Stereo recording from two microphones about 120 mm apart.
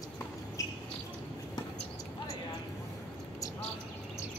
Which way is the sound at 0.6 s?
25° left (ahead or behind).